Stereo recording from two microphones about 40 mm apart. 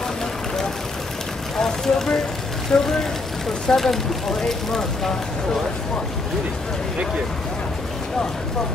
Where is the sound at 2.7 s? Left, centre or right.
Left.